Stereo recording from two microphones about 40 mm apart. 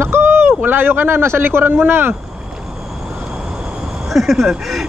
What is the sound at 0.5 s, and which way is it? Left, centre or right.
Speech, right.